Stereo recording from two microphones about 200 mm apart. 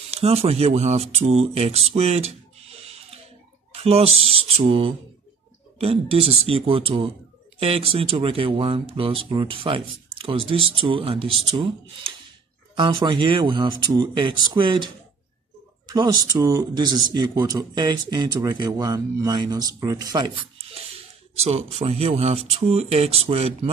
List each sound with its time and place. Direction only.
0.1 s speech: 30° right (ahead or behind)
15.9 s speech: 20° right (ahead or behind)
20.5 s speech: 30° right (ahead or behind)